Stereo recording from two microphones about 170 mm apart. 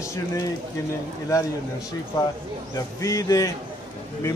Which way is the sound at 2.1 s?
25° left (ahead or behind).